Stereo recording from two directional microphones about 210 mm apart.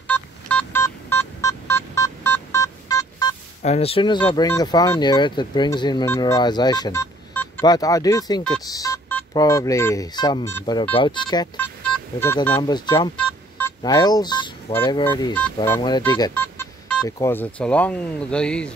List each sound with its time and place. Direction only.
0.1 s telephone dialing: 5° left (ahead or behind)
3.6 s speech: 30° left (ahead or behind)
13.2 s telephone dialing: 10° left (ahead or behind)
15.0 s speech: 20° left (ahead or behind)